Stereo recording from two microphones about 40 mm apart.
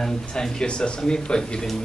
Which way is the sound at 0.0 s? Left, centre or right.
Centre.